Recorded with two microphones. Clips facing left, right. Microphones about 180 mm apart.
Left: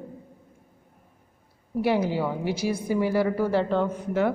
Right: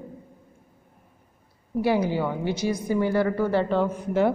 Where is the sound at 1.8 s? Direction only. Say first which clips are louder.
Right 1 dB; centre (ahead or behind).